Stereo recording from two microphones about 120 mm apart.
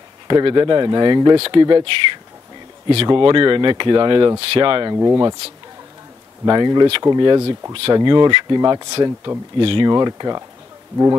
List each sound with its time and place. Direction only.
0.3 s speech: 40° right (ahead or behind)
3.2 s speech: 45° right (ahead or behind)
4.9 s speech: 30° right (ahead or behind)
6.4 s speech: 35° right (ahead or behind)
9.6 s speech: 50° right (ahead or behind)
9.8 s speech: 35° right (ahead or behind)